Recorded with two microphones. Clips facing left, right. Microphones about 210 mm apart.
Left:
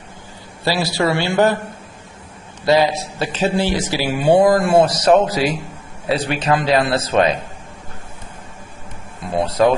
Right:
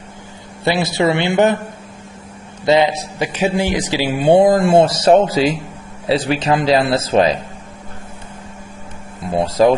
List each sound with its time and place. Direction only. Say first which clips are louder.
0.7 s a man's voice: right 2 dB; 20° right (ahead or behind)
2.6 s a man's voice: right 1 dB; 20° right (ahead or behind)
9.3 s a man's voice: right 2 dB; 30° right (ahead or behind)